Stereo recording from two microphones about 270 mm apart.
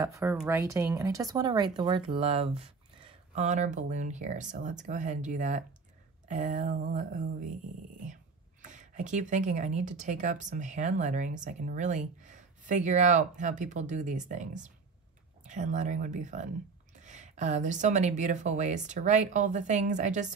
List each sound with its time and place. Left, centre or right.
0.0 s speech: centre; by 7.4 s right
8.6 s speech: right